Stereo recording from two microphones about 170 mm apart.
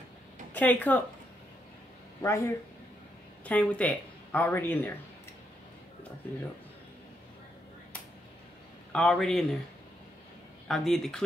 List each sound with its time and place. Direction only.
0.5 s speech: 10° left (ahead or behind)
2.2 s a woman's voice: 15° left (ahead or behind)
8.9 s a man's voice: 5° left (ahead or behind)
10.7 s a man's voice: centre (ahead or behind)